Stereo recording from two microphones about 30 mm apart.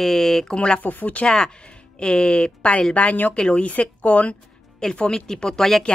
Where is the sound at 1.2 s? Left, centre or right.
Left.